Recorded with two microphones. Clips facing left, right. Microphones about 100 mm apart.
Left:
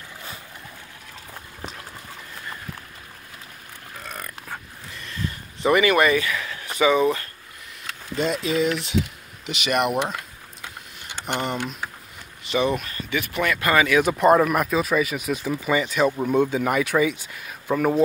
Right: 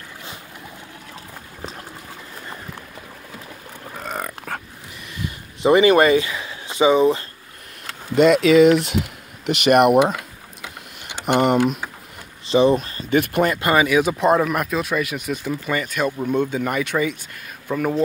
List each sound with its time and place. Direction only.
3.9 s a sound: 80° right
5.0 s a sound: 15° right (ahead or behind)
8.1 s speech: 70° right (ahead or behind); by 9.9 s 55° right (ahead or behind)
11.2 s speech: 60° right (ahead or behind)
12.4 s speech: 30° right (ahead or behind)
13.1 s speech: 55° right (ahead or behind)
13.4 s speech: 35° right (ahead or behind)
13.7 s speech: 20° right (ahead or behind)
13.9 s speech: centre (ahead or behind)